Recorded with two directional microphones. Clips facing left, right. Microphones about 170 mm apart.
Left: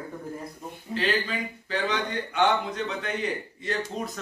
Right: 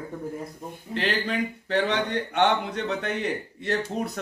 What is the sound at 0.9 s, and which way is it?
Speech, 70° right (ahead or behind).